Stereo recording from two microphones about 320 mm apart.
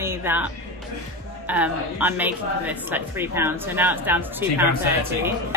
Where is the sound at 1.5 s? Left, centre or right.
Centre.